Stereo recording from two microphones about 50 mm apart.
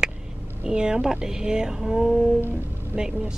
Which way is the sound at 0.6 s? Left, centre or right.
Centre.